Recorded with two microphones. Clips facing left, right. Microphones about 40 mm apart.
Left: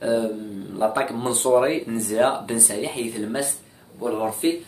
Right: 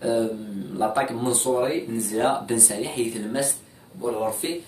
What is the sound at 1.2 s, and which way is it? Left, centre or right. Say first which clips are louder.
Speech: left 4 dB; left.